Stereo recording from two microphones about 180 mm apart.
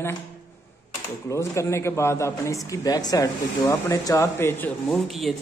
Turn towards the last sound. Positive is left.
turn(degrees=0)  # may be behind; listen again after turning